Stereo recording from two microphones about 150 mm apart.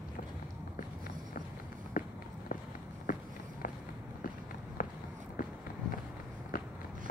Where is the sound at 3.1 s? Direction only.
65° left (ahead or behind).